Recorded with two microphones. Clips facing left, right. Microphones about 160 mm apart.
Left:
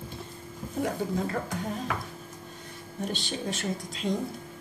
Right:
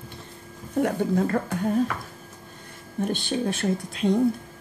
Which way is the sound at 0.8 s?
60° right (ahead or behind).